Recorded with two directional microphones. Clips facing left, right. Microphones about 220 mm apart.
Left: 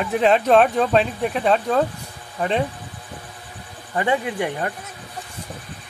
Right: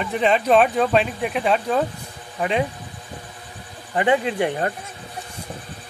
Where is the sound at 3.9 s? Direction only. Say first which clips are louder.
Right 2 dB; 20° right (ahead or behind).